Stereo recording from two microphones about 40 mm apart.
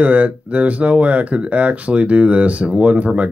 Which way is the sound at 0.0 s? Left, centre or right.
Right.